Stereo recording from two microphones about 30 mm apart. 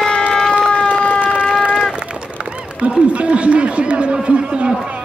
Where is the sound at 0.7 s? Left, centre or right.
Left.